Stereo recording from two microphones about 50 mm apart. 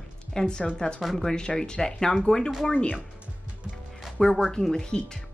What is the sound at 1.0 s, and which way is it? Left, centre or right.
Speech, centre.